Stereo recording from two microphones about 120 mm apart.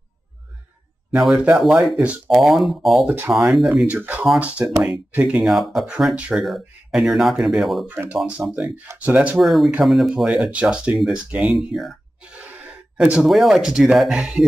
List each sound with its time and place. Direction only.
1.1 s speech: centre (ahead or behind)
3.1 s speech: 15° right (ahead or behind); by 7.9 s centre (ahead or behind)
7.9 s speech: 15° right (ahead or behind)
9.4 s speech: centre (ahead or behind)